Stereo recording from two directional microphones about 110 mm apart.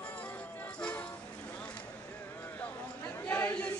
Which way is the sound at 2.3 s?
15° left (ahead or behind).